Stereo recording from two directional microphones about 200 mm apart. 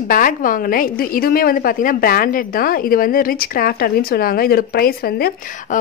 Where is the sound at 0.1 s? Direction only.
45° left (ahead or behind).